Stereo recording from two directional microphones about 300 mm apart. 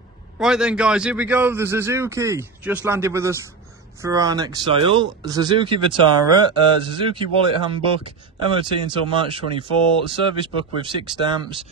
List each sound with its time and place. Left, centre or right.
0.4 s speech: centre